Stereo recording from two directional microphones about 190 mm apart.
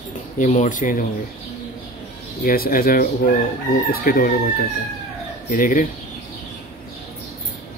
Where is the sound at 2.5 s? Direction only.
50° left (ahead or behind).